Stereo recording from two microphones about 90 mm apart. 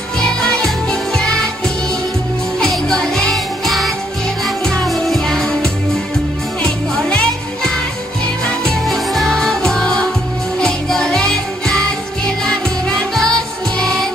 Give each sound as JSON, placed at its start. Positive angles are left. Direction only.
{"t": 0.2, "sound": "music", "side_deg": 10}